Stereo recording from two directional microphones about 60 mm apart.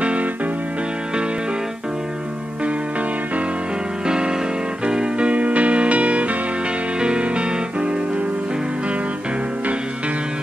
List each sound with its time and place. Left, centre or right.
0.0 s music: right
4.8 s music: centre